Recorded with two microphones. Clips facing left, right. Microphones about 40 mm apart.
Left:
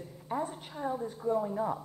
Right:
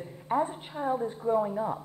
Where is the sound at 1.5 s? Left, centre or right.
Centre.